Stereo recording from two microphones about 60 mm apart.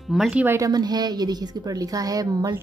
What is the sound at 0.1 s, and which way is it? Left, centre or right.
Speech, centre.